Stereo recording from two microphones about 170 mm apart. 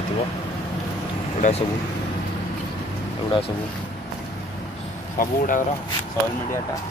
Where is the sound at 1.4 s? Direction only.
40° left (ahead or behind).